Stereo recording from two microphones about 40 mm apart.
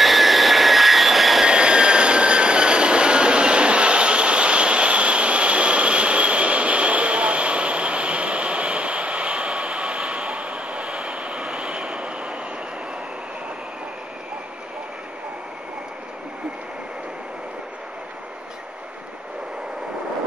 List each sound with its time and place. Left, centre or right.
0.0 s vehicle: centre
1.4 s vehicle: right